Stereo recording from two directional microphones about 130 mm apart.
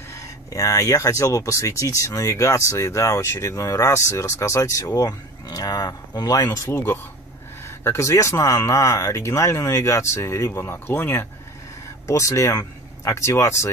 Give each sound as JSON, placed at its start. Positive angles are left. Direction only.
{"t": 0.1, "sound": "speech", "side_deg": 25}